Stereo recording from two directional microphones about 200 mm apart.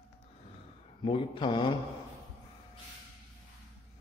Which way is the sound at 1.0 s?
25° left (ahead or behind).